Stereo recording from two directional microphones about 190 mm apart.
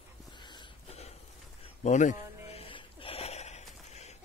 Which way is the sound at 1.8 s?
40° left (ahead or behind).